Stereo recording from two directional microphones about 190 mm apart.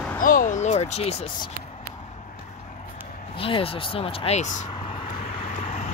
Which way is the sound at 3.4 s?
30° left (ahead or behind).